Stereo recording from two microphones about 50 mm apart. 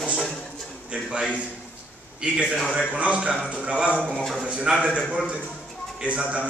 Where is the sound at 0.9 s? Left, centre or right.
Right.